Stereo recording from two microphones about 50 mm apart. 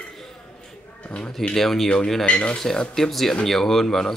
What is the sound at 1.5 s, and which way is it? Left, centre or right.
Speech, centre.